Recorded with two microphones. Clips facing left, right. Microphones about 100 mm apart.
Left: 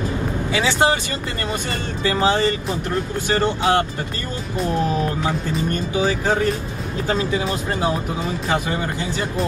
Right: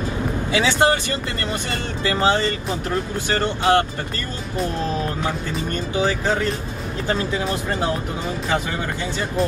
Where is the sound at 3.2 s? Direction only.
20° left (ahead or behind).